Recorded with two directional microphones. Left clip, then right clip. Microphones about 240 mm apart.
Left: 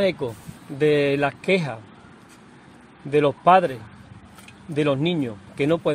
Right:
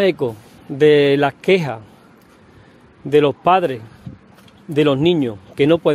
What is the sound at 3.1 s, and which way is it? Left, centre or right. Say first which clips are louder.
A man's voice: right 3 dB; right.